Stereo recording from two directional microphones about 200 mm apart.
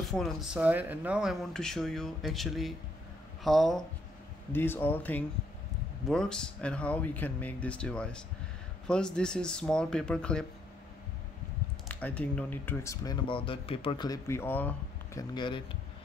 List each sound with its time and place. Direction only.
0.1 s speech: centre (ahead or behind)
11.9 s speech: 5° left (ahead or behind)
15.3 s speech: 25° left (ahead or behind)